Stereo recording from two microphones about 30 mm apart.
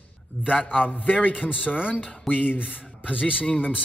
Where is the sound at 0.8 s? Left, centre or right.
Left.